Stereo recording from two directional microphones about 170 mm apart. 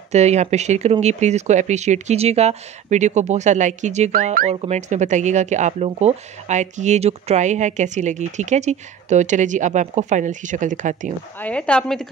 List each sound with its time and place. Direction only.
0.1 s speech: 40° right (ahead or behind)
4.1 s speech: 60° right (ahead or behind)
4.5 s speech: 40° right (ahead or behind)
11.3 s a woman's voice: 10° left (ahead or behind)